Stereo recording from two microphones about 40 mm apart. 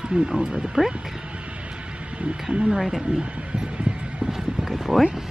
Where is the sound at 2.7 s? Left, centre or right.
Centre.